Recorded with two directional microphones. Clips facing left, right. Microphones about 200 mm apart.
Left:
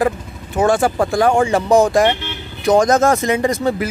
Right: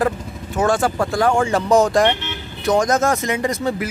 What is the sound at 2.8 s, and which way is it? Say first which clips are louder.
Speech: left 4 dB; 55° left (ahead or behind).